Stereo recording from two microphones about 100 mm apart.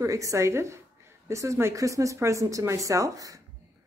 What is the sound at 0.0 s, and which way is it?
Speech, 35° right (ahead or behind).